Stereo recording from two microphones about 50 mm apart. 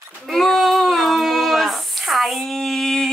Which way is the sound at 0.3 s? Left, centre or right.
Centre.